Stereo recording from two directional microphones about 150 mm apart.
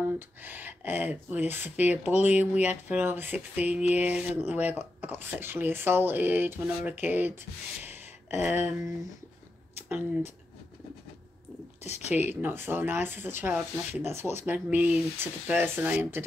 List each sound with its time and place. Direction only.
0.4 s speech: 15° right (ahead or behind)
8.5 s speech: 15° right (ahead or behind)
9.8 s speech: 10° right (ahead or behind)
11.8 s speech: 45° left (ahead or behind)
12.3 s speech: 15° right (ahead or behind)